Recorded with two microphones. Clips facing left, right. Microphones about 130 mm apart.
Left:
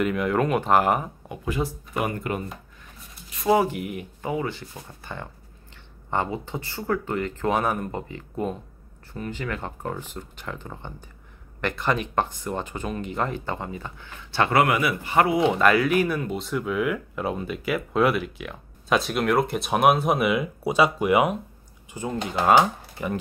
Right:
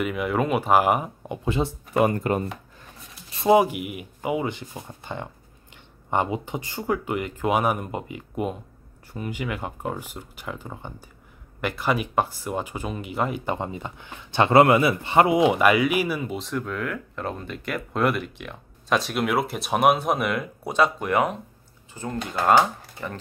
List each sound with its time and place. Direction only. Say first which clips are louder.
0.0 s speech: left 2 dB; 5° right (ahead or behind)
1.3 s speech: right 2 dB; 25° right (ahead or behind)
3.3 s a sound: right 2 dB; 30° right (ahead or behind)
3.5 s speech: right 4 dB; 10° right (ahead or behind); by 23.1 s 10° left (ahead or behind)